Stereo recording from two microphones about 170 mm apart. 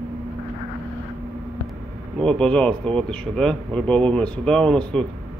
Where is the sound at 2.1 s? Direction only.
5° left (ahead or behind).